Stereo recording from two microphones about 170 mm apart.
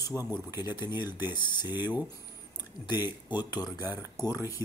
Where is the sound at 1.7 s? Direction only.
10° right (ahead or behind).